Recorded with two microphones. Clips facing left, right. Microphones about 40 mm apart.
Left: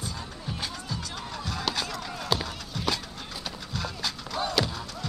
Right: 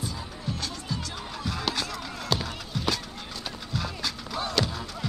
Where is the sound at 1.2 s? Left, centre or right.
Centre.